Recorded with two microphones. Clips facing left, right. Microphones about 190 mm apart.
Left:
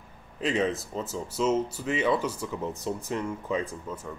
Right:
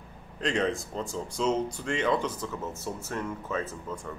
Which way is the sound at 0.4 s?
5° left (ahead or behind).